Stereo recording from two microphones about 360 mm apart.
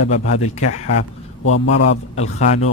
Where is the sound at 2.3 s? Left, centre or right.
Centre.